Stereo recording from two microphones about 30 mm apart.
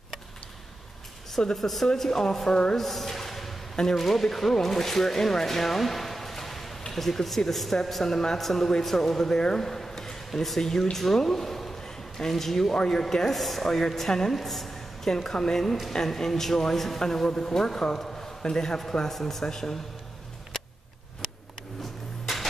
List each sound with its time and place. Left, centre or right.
1.6 s speech: centre
2.0 s a man's voice: centre
9.7 s a sound: centre
10.6 s a man's voice: centre
11.8 s a sound: centre
12.7 s speech: left
13.3 s a man's voice: centre
14.3 s speech: centre
15.1 s a man's voice: centre
17.3 s speech: left
19.1 s speech: centre
19.4 s a man's voice: centre
22.2 s music: centre